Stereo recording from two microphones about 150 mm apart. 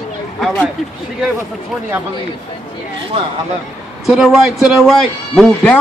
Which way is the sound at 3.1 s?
40° right (ahead or behind).